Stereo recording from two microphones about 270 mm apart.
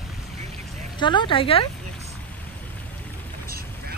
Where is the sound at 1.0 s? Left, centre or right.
Centre.